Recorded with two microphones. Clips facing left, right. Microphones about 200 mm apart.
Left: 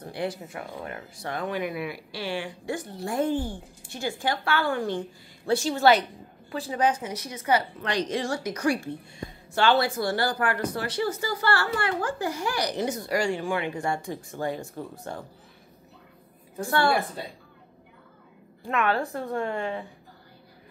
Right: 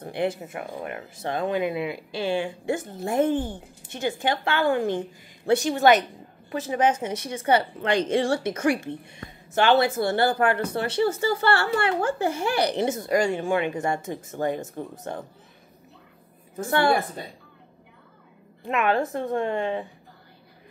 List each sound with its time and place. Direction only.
0.0 s speech: 25° right (ahead or behind)
16.5 s speech: 20° right (ahead or behind)
18.7 s speech: 20° right (ahead or behind)